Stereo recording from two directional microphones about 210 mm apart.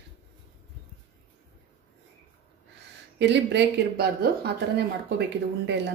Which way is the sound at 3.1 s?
55° right (ahead or behind).